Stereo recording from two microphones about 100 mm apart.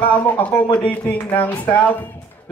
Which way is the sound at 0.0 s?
15° left (ahead or behind).